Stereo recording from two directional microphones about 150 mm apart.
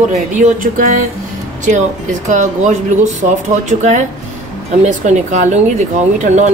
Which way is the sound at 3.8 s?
50° right (ahead or behind).